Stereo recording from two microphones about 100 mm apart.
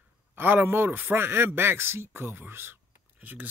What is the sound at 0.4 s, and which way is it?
Speech, 20° right (ahead or behind).